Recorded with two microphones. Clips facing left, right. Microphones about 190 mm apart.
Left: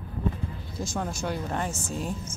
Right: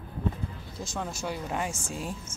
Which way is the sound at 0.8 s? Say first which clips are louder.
Left 3 dB; centre (ahead or behind).